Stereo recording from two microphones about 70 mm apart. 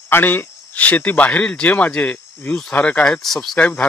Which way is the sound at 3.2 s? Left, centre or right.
Centre.